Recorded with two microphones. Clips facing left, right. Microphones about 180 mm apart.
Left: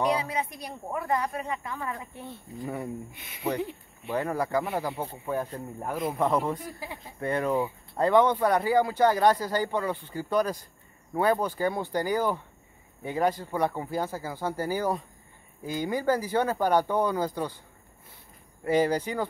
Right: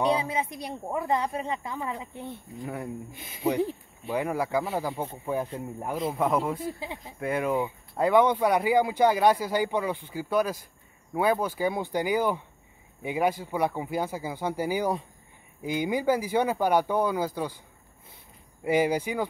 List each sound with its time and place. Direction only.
0.0 s speech: 25° right (ahead or behind)
2.6 s speech: centre (ahead or behind)
4.1 s speech: 10° right (ahead or behind)
6.6 s speech: 20° right (ahead or behind)
7.2 s speech: 5° right (ahead or behind)
18.6 s speech: 10° right (ahead or behind)